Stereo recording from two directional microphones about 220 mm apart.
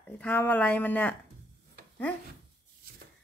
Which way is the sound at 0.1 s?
5° left (ahead or behind).